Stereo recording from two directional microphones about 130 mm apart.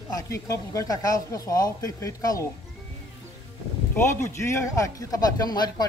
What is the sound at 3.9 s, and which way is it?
Speech, 20° left (ahead or behind).